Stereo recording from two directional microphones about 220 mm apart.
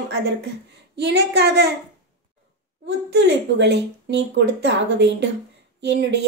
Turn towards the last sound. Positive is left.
turn(degrees=-50)  # may be behind; listen again after turning